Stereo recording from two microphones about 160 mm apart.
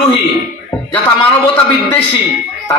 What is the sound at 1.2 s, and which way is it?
Speech, 35° left (ahead or behind).